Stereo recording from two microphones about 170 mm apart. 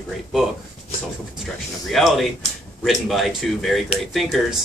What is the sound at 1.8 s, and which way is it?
Speech, centre (ahead or behind).